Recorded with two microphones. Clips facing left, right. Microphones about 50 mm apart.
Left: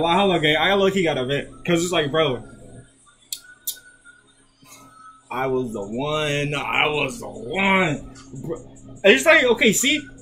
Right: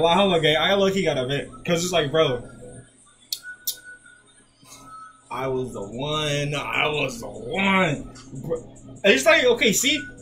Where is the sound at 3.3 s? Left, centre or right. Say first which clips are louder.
Right 4 dB; centre.